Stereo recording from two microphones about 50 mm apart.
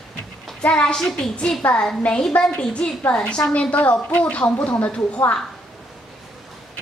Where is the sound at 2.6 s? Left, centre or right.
Centre.